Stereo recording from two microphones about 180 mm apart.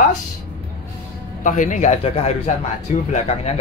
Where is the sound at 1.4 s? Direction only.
45° left (ahead or behind).